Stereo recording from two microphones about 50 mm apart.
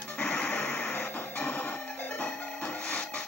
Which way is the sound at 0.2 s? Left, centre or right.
Left.